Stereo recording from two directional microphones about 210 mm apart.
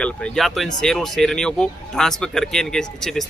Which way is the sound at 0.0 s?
Centre (ahead or behind).